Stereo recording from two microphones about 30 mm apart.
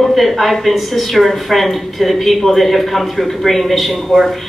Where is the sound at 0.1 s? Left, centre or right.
Centre.